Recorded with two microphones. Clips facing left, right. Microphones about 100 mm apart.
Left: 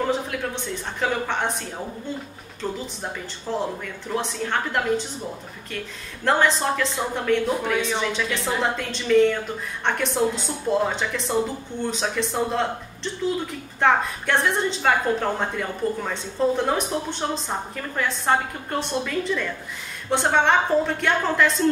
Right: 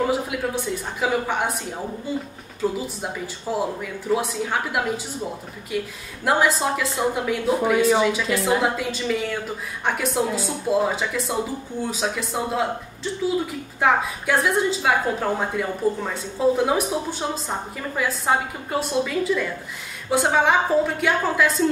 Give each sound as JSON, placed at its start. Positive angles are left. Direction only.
{"t": 0.0, "sound": "a woman's voice", "side_deg": -5}
{"t": 2.6, "sound": "a woman's voice", "side_deg": -5}
{"t": 6.2, "sound": "a woman's voice", "side_deg": -5}